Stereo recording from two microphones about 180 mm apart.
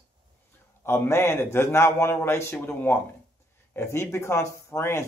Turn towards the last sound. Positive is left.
turn(degrees=15)  # may be behind; listen again after turning